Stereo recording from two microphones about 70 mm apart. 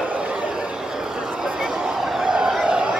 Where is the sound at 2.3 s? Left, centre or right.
Centre.